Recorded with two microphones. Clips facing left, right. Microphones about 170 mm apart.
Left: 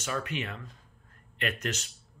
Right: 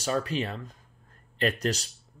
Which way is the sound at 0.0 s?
35° right (ahead or behind).